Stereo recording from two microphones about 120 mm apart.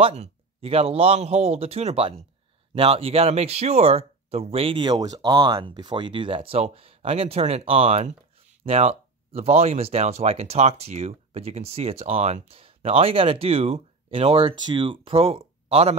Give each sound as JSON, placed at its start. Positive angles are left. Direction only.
{"t": 0.0, "sound": "speech", "side_deg": -60}